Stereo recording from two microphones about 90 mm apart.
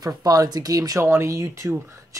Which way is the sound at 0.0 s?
45° right (ahead or behind).